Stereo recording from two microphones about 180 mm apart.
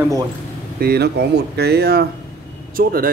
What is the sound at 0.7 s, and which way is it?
Speech, 60° right (ahead or behind).